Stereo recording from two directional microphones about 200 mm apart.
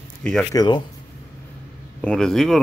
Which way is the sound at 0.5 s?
20° left (ahead or behind).